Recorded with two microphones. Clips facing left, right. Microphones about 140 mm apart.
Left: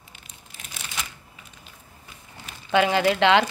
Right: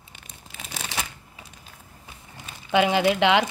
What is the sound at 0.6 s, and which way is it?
Crumpling, 90° right.